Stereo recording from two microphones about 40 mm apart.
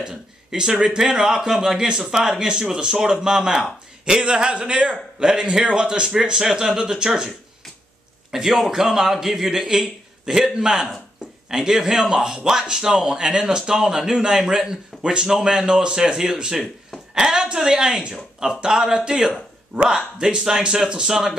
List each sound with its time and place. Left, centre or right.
0.0 s a man's voice: centre
4.0 s speech: right
8.4 s a man's voice: centre